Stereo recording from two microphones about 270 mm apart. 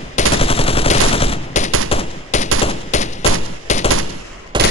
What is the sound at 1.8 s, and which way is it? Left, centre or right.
Gunshot, left.